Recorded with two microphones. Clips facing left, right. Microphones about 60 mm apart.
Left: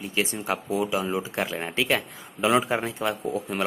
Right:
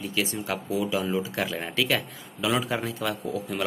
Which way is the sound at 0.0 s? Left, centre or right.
Left.